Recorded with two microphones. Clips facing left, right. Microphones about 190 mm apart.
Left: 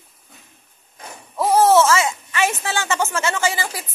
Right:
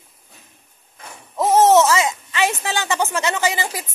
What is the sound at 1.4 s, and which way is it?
Speech, 20° right (ahead or behind).